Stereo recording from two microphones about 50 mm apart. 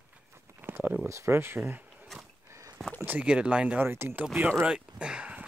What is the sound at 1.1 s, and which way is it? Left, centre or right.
Speech, right.